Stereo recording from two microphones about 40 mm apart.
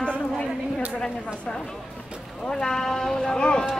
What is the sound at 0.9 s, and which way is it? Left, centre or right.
Speech, left.